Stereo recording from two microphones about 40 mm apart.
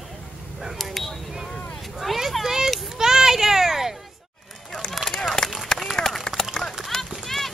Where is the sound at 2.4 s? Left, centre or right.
Centre.